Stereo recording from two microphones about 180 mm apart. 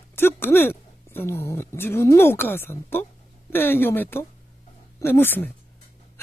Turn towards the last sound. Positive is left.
turn(degrees=10)  # may be behind; listen again after turning